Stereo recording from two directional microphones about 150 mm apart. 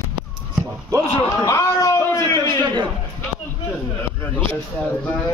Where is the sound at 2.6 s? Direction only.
30° right (ahead or behind).